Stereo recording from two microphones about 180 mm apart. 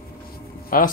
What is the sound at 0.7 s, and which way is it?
Speech, 50° left (ahead or behind).